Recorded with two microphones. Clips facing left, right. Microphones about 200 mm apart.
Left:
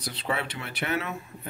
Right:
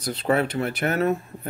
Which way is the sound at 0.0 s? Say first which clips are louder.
Right 9 dB; 50° right (ahead or behind).